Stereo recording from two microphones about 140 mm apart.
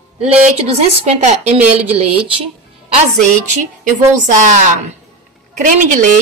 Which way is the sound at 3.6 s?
70° right (ahead or behind).